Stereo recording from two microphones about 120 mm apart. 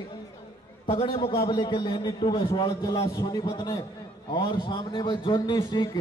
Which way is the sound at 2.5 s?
30° left (ahead or behind).